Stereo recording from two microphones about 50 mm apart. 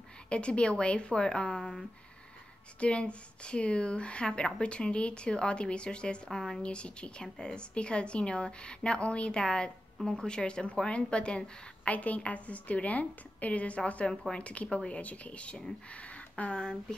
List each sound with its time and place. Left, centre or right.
0.3 s speech: left
2.8 s speech: left
6.6 s speech: left